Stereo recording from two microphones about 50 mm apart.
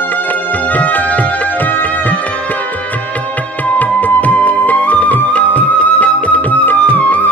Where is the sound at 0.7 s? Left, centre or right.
Left.